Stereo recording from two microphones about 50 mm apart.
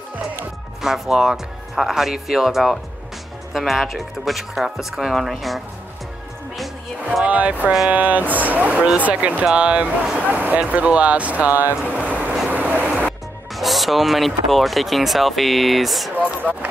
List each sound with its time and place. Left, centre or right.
0.8 s speech: centre
7.2 s speech: right
10.2 s a sound: right
10.7 s speech: right
12.1 s vehicle: right
13.6 s speech: centre